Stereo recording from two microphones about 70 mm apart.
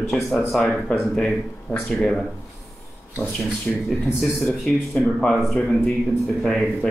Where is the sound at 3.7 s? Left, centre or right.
Centre.